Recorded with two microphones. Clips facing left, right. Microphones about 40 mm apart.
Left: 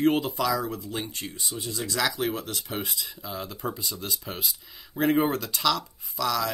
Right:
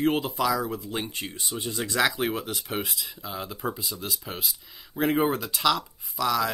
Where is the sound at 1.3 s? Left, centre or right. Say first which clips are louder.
Right 1 dB; right.